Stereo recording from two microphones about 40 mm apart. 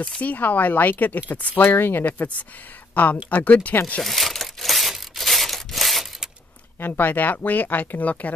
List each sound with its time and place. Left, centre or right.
0.2 s speech: left
1.6 s speech: left
2.0 s speech: left
2.9 s a sound: left
3.3 s speech: left
4.0 s crumpling: centre
6.8 s speech: left